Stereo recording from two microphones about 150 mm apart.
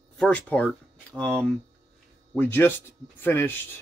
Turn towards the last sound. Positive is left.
turn(degrees=15)  # may be behind; listen again after turning